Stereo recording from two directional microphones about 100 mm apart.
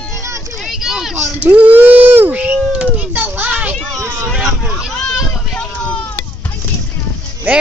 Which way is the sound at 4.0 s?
20° right (ahead or behind).